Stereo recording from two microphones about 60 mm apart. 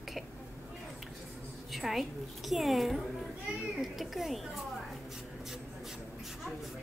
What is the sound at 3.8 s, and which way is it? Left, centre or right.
Cat, centre.